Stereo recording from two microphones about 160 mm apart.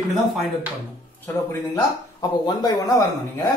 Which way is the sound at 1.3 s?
15° left (ahead or behind).